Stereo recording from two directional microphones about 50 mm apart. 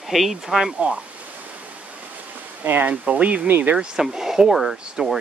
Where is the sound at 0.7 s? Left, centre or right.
Right.